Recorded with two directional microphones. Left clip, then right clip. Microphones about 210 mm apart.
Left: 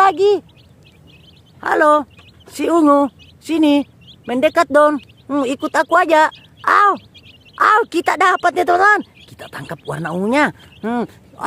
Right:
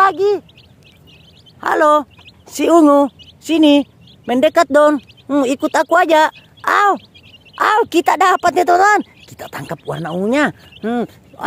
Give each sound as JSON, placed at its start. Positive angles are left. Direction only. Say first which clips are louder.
{"t": 0.0, "sound": "speech", "louder": "left 1 dB", "side_deg": 5}
{"t": 1.6, "sound": "speech", "louder": "right 1 dB", "side_deg": -10}
{"t": 9.8, "sound": "speech", "louder": "right 1 dB", "side_deg": 0}